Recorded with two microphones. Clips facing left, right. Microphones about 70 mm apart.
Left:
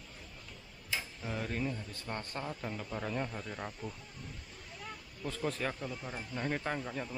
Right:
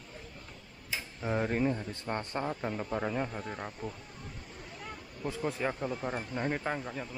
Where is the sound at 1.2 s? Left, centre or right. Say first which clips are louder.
Right 10 dB; right.